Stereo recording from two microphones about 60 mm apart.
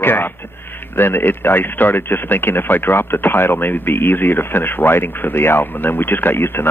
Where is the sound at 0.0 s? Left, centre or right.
Left.